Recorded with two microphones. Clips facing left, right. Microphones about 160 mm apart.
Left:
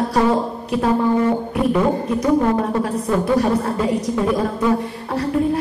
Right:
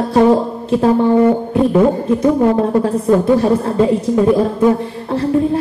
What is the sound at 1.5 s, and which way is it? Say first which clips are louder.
Speech: right 5 dB; 25° right (ahead or behind).